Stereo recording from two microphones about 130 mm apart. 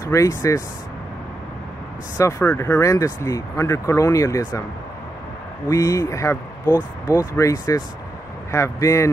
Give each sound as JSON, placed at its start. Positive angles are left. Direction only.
{"t": 0.0, "sound": "speech", "side_deg": 25}
{"t": 2.1, "sound": "speech", "side_deg": 25}
{"t": 5.7, "sound": "speech", "side_deg": 25}